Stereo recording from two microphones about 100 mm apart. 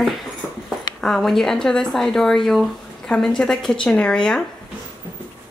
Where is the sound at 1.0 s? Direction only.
5° left (ahead or behind).